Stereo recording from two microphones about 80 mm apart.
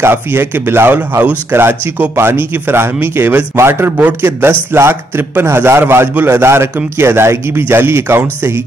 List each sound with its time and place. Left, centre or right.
0.0 s a man's voice: right